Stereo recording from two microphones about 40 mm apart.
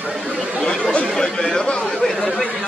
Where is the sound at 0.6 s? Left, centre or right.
Left.